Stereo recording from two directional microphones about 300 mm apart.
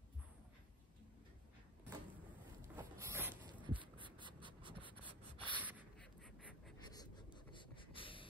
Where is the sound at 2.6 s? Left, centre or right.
Centre.